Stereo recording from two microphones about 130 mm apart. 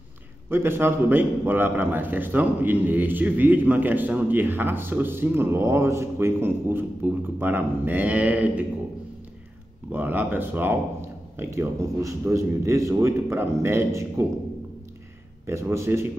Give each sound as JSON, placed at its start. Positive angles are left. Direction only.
{"t": 0.5, "sound": "a man's voice", "side_deg": -15}
{"t": 9.9, "sound": "a man's voice", "side_deg": -15}
{"t": 15.4, "sound": "a man's voice", "side_deg": -20}